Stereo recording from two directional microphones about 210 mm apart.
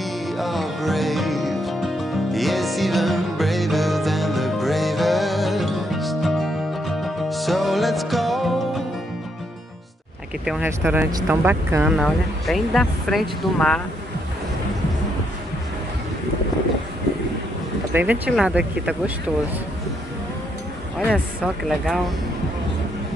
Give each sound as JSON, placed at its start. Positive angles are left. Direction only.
{"t": 0.0, "sound": "music", "side_deg": 0}
{"t": 10.4, "sound": "speech", "side_deg": -5}
{"t": 17.9, "sound": "speech", "side_deg": -10}
{"t": 21.6, "sound": "speech", "side_deg": 0}